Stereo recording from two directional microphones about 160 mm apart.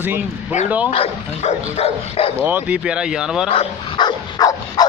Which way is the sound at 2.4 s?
10° right (ahead or behind).